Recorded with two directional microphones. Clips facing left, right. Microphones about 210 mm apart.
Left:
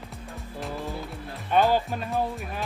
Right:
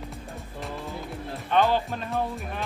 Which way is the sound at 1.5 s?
10° left (ahead or behind).